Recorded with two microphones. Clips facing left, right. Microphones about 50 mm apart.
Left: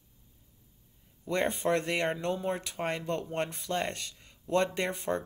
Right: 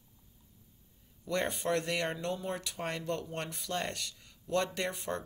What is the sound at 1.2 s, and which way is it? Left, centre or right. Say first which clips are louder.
Speech: left 4 dB; left.